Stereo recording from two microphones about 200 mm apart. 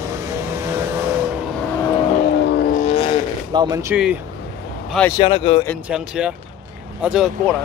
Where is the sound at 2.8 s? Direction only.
30° left (ahead or behind).